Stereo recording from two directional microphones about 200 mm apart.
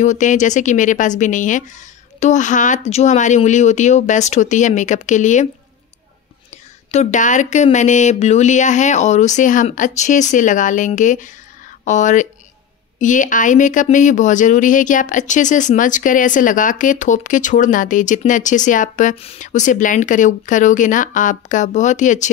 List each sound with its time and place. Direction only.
0.0 s speech: 40° left (ahead or behind)
6.9 s speech: 35° left (ahead or behind)